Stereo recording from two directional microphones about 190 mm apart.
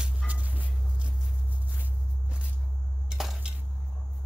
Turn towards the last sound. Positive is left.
turn(degrees=0)  # may be behind; listen again after turning